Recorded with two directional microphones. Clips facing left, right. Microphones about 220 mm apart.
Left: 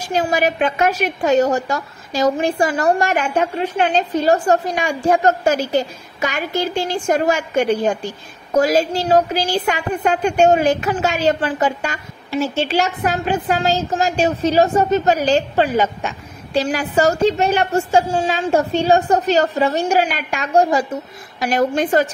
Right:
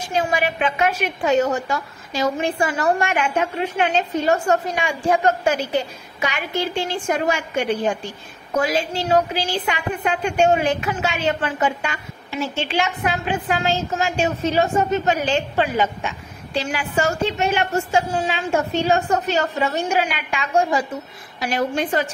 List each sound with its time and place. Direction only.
0.1 s a woman's voice: 40° left (ahead or behind)